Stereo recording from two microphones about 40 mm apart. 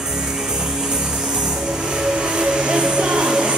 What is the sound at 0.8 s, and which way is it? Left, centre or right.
Music, centre.